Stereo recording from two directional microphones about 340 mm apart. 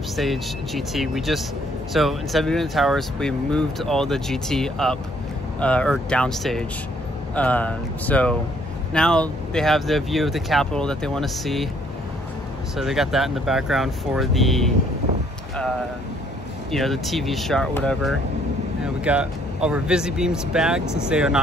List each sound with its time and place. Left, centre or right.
0.1 s speech: centre
12.7 s speech: centre
16.7 s speech: centre